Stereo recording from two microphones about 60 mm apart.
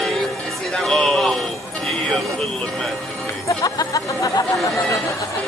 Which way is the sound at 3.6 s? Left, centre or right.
Left.